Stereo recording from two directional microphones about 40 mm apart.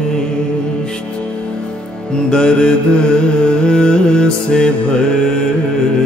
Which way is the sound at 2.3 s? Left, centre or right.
Left.